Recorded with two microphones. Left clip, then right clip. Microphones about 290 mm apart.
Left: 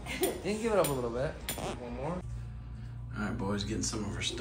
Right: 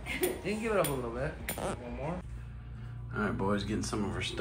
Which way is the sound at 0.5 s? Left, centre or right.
Left.